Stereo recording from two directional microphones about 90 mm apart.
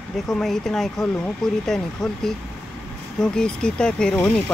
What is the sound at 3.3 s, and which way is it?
Speech, 10° left (ahead or behind).